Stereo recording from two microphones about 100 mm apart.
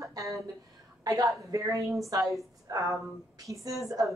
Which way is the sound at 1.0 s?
35° right (ahead or behind).